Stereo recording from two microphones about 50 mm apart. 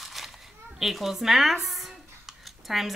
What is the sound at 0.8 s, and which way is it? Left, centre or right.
Speech, centre.